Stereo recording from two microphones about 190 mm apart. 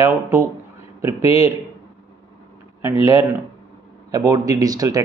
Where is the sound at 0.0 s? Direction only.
15° right (ahead or behind).